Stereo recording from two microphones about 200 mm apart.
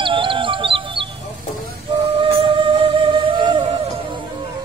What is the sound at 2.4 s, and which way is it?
Music, 25° right (ahead or behind).